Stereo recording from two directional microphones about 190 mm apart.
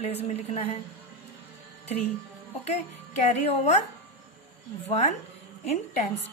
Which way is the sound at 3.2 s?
35° left (ahead or behind).